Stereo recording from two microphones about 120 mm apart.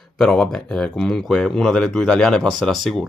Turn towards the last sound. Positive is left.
turn(degrees=0)  # may be behind; listen again after turning